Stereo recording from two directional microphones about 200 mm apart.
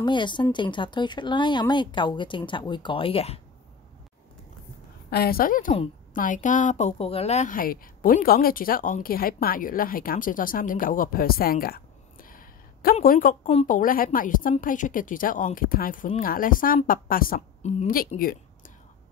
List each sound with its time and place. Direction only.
0.0 s speech: 25° left (ahead or behind)
5.1 s a woman's voice: 50° left (ahead or behind)